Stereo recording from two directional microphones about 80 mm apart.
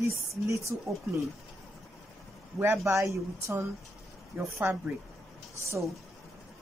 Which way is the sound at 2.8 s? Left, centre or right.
Right.